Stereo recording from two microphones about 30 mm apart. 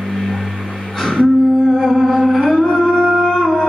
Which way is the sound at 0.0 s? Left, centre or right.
Centre.